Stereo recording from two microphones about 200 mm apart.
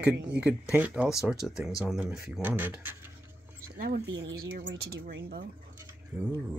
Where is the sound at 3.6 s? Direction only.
45° right (ahead or behind); by 5.0 s 65° right (ahead or behind).